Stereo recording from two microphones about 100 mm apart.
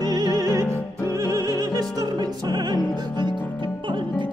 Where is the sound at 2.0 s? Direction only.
40° right (ahead or behind).